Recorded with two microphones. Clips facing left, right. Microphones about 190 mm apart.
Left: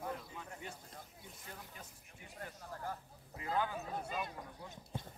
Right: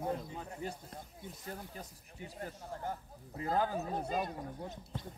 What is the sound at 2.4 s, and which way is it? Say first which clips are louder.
Speech: right 3 dB; 30° right (ahead or behind).